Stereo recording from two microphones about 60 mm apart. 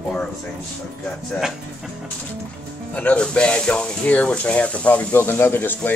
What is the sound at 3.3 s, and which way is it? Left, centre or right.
Speech, centre.